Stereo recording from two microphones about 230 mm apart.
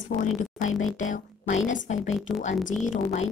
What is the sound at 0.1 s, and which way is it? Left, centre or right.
Speech, left.